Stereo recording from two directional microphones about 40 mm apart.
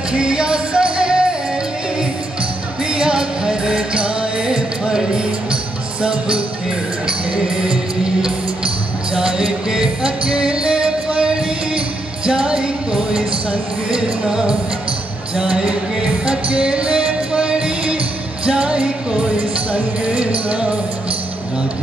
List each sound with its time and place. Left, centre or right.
0.1 s music: right
2.9 s music: right
6.0 s music: right
9.2 s music: centre
15.5 s music: right